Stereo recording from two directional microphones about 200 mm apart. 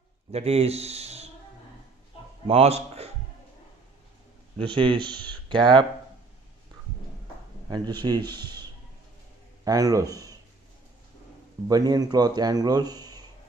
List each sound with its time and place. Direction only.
0.3 s speech: 30° right (ahead or behind)
2.4 s a man's voice: 30° right (ahead or behind)
4.6 s speech: 25° right (ahead or behind)
7.7 s speech: 20° right (ahead or behind)
9.7 s a man's voice: 15° right (ahead or behind)
11.6 s speech: 20° right (ahead or behind)